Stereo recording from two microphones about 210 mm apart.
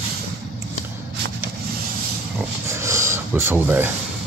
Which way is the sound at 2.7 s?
15° right (ahead or behind).